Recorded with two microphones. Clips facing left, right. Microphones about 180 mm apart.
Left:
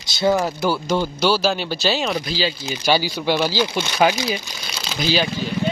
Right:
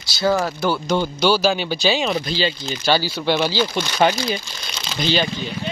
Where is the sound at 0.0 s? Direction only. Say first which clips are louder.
Left 1 dB; 20° left (ahead or behind).